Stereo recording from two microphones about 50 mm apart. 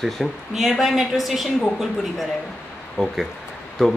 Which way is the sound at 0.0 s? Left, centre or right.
Centre.